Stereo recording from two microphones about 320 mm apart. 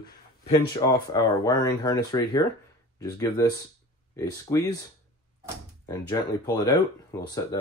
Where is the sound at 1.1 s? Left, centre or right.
Centre.